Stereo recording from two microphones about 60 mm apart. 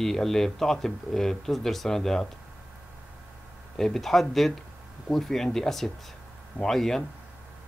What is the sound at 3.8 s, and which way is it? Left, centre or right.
Speech, centre.